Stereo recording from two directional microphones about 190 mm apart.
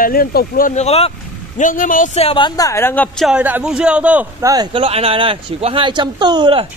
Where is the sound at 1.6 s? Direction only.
45° left (ahead or behind); by 3.3 s 10° left (ahead or behind).